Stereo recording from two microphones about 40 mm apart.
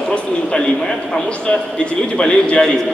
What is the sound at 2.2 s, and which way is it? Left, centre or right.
Speech, centre.